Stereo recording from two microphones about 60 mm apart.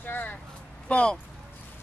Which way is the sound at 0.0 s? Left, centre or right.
Left.